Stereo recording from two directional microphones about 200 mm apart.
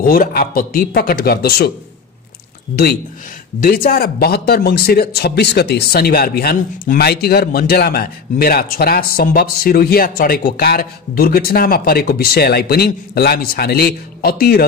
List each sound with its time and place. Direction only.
0.0 s speech: 45° left (ahead or behind)
2.7 s speech: 50° left (ahead or behind)